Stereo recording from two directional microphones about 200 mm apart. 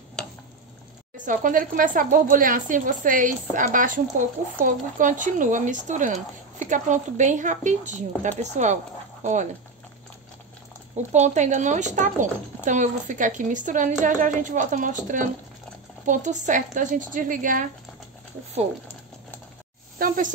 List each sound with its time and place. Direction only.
1.1 s speech: 40° right (ahead or behind)
11.0 s speech: 35° right (ahead or behind)
20.0 s speech: 40° right (ahead or behind)